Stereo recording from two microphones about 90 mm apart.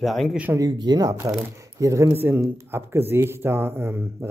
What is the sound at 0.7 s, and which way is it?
Speech, 50° right (ahead or behind).